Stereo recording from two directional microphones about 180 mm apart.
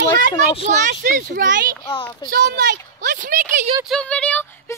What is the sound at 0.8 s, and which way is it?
Speech, 50° right (ahead or behind).